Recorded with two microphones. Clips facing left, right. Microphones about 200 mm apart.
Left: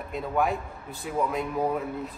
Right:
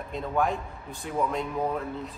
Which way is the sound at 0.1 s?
5° left (ahead or behind).